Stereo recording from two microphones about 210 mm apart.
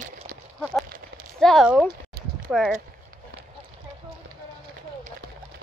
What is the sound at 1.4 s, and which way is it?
Speech, centre (ahead or behind).